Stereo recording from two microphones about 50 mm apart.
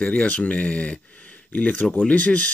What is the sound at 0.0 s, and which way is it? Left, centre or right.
Speech, left.